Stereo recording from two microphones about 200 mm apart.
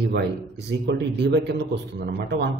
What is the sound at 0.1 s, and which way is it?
A man's voice, 60° right (ahead or behind).